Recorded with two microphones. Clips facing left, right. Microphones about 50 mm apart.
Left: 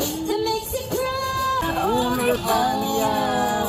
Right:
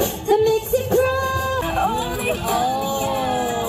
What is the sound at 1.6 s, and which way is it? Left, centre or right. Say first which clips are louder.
Music: even; right.